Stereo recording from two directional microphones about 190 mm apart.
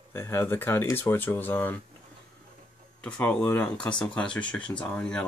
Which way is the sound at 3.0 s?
10° left (ahead or behind).